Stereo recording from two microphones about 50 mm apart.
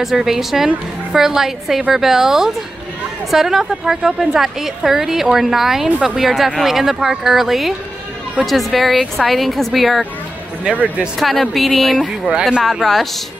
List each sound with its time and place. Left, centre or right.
0.0 s a woman's voice: centre
10.6 s speech: right
11.1 s speech: centre